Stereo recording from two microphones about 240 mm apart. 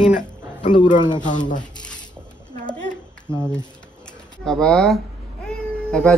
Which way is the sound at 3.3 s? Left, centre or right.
Centre.